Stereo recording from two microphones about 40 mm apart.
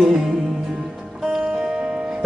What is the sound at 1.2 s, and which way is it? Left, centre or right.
Music, centre.